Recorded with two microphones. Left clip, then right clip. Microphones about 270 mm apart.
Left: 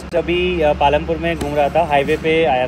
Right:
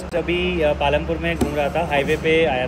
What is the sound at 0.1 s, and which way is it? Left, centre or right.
Speech, centre.